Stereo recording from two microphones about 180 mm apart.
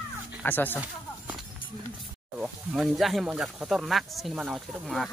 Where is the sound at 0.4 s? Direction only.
10° left (ahead or behind).